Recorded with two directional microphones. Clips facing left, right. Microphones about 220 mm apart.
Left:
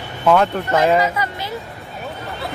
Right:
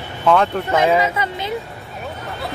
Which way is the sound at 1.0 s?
20° right (ahead or behind).